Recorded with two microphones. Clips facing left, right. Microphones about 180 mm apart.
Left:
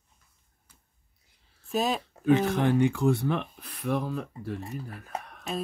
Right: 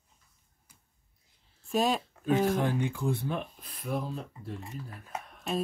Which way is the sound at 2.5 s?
75° left (ahead or behind).